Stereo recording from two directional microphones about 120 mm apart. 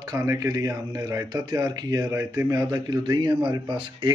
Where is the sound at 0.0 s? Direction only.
30° right (ahead or behind).